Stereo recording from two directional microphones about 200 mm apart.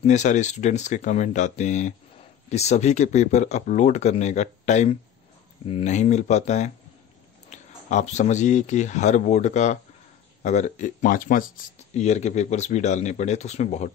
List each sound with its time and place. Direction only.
0.0 s speech: 35° left (ahead or behind)
11.9 s speech: 35° left (ahead or behind)